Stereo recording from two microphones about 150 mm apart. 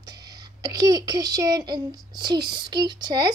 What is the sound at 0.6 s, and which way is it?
A child's voice, 25° right (ahead or behind).